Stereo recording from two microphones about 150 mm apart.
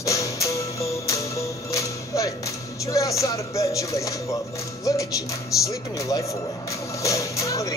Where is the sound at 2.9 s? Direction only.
20° left (ahead or behind).